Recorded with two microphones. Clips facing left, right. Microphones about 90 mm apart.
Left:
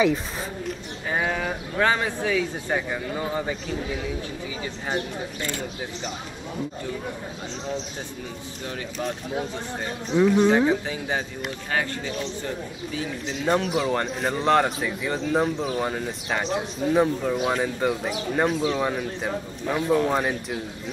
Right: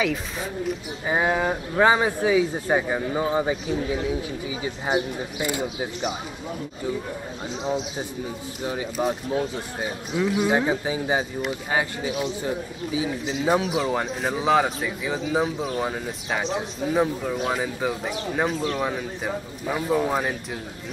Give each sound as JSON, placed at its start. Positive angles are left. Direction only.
{"t": 0.1, "sound": "a man's voice", "side_deg": 0}
{"t": 1.0, "sound": "speech", "side_deg": -15}
{"t": 9.0, "sound": "a man's voice", "side_deg": -15}